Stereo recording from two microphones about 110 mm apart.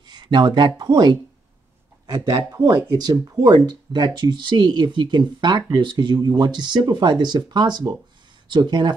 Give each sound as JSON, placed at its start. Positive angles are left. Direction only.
{"t": 0.0, "sound": "speech", "side_deg": -45}
{"t": 2.5, "sound": "speech", "side_deg": -35}